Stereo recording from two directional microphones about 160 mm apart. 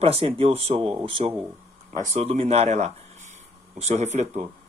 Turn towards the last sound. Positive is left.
turn(degrees=-45)  # may be behind; listen again after turning